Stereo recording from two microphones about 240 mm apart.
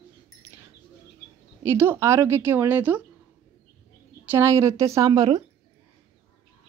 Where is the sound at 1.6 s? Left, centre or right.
Centre.